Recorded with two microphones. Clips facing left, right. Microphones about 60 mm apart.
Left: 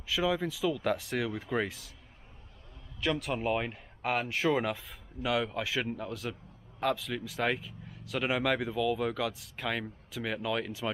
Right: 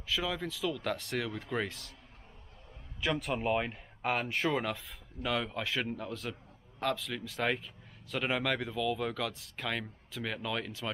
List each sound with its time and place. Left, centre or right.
0.1 s speech: centre
3.0 s speech: centre